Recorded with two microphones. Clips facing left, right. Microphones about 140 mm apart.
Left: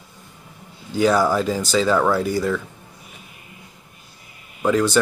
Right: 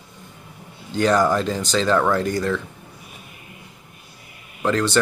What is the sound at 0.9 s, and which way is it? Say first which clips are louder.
Speech: left 1 dB; 10° left (ahead or behind).